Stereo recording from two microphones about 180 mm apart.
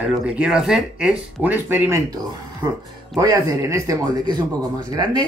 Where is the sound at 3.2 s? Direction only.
20° right (ahead or behind).